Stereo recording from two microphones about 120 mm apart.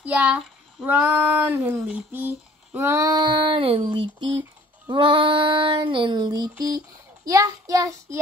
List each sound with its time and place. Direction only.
0.0 s a child's voice: 10° right (ahead or behind)
3.1 s child singing: 40° right (ahead or behind)